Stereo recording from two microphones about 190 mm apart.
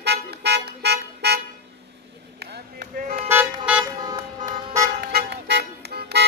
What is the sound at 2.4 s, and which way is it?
Chop, 55° right (ahead or behind).